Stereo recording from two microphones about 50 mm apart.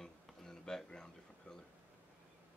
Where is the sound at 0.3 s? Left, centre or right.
Centre.